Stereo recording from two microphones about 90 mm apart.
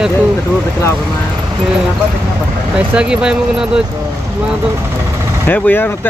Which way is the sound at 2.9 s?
10° right (ahead or behind).